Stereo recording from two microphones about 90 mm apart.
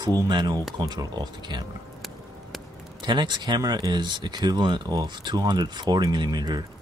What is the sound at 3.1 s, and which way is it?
Speech, 55° right (ahead or behind).